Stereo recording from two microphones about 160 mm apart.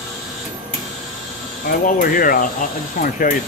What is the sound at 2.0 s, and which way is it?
Mechanisms, 65° left (ahead or behind).